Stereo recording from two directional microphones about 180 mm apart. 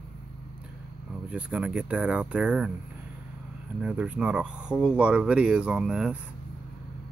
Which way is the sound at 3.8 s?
5° right (ahead or behind).